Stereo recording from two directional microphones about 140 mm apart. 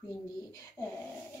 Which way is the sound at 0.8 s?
10° left (ahead or behind).